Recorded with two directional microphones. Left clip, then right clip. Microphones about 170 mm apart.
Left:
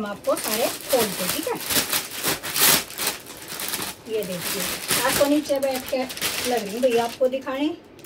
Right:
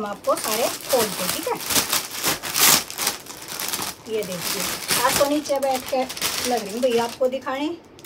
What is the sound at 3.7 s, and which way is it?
Speech, 5° right (ahead or behind).